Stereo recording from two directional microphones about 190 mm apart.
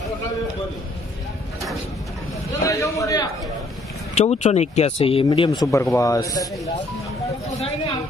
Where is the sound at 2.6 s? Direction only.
15° left (ahead or behind).